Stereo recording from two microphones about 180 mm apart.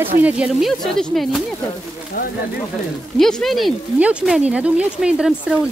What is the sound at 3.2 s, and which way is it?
Speech, centre (ahead or behind).